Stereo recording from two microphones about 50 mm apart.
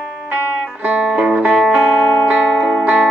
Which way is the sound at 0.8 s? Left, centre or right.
Right.